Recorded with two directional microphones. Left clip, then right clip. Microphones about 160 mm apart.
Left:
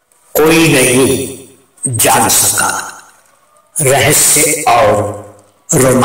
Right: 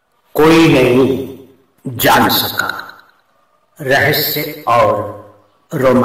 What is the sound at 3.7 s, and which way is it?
A man's voice, 25° left (ahead or behind).